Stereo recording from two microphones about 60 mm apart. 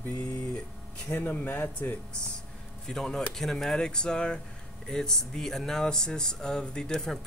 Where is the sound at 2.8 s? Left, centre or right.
Centre.